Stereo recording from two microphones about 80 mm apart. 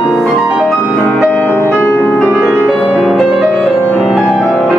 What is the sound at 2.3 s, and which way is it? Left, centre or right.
Music, right.